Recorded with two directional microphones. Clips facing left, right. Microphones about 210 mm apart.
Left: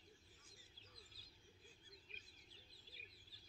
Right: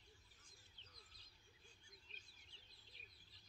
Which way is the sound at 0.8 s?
35° left (ahead or behind).